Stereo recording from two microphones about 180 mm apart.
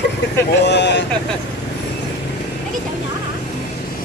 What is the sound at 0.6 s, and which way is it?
Vehicle, 75° left (ahead or behind).